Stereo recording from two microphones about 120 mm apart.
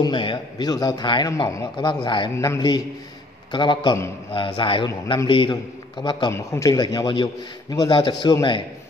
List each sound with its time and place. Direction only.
0.0 s a man's voice: 40° left (ahead or behind)
2.3 s a man's voice: 25° left (ahead or behind)
3.5 s a man's voice: 40° left (ahead or behind)
6.3 s a man's voice: 25° left (ahead or behind); by 8.6 s 40° left (ahead or behind)